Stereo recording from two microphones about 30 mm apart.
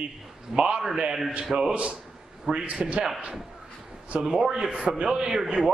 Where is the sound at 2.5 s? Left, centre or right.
Right.